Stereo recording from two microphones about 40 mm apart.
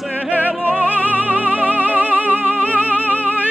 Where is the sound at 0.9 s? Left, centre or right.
Right.